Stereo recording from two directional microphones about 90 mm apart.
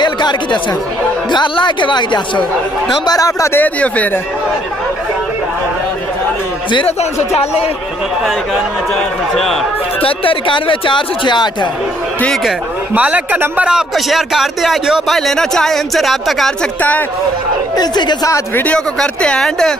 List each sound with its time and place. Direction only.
0.0 s chatter: 55° left (ahead or behind)
1.3 s speech: 55° left (ahead or behind)
3.1 s speech: 40° left (ahead or behind)
3.5 s speech: 15° left (ahead or behind)
8.5 s a man's voice: 5° left (ahead or behind)
10.0 s speech: 80° left; by 11.7 s 55° left (ahead or behind)
12.9 s a man's voice: 15° right (ahead or behind)
13.7 s a man's voice: 5° right (ahead or behind)
17.7 s speech: 50° left (ahead or behind)
18.5 s speech: 20° left (ahead or behind)
18.9 s a man's voice: 10° left (ahead or behind)